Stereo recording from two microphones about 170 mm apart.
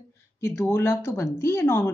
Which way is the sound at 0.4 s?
15° left (ahead or behind).